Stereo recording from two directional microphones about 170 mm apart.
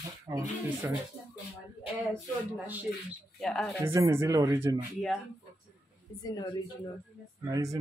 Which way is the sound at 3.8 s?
15° right (ahead or behind).